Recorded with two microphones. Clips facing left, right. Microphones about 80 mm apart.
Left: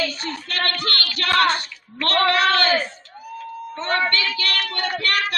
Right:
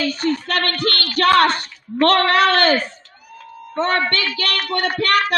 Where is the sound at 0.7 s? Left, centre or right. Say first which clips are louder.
Right 3 dB; right.